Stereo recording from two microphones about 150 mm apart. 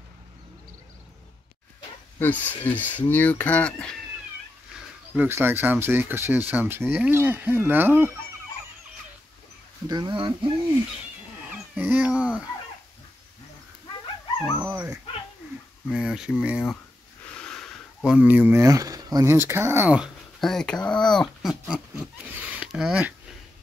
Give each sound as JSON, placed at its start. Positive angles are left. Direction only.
{"t": 2.1, "sound": "speech", "side_deg": 10}
{"t": 5.1, "sound": "speech", "side_deg": -10}
{"t": 9.8, "sound": "speech", "side_deg": -30}
{"t": 11.7, "sound": "speech", "side_deg": -10}
{"t": 14.6, "sound": "dog", "side_deg": -15}
{"t": 15.9, "sound": "speech", "side_deg": -5}